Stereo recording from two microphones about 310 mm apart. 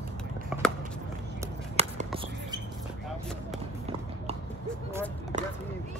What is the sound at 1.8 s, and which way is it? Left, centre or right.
Basketball bounce, centre.